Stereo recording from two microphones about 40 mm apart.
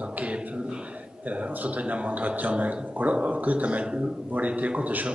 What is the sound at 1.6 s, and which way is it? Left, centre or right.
A man's voice, right.